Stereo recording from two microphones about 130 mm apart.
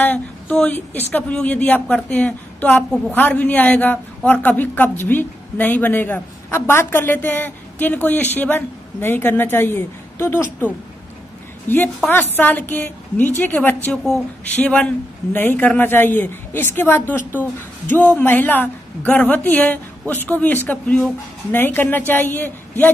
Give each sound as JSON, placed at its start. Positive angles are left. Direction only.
{"t": 0.0, "sound": "a man's voice", "side_deg": 10}